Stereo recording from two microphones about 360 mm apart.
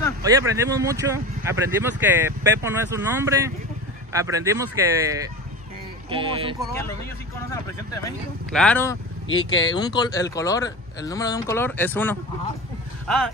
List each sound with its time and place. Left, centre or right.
0.2 s speech: centre
6.0 s speech: centre
6.6 s speech: centre
9.3 s speech: left
9.8 s speech: centre